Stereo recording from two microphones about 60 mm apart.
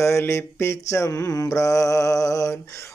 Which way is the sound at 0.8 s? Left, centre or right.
Left.